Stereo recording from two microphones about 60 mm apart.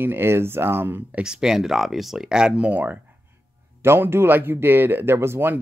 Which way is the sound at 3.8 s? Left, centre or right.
Right.